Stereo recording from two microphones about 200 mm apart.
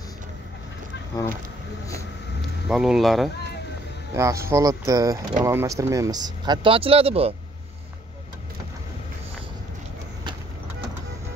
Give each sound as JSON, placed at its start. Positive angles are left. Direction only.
{"t": 2.7, "sound": "speech", "side_deg": 0}
{"t": 4.1, "sound": "speech", "side_deg": -15}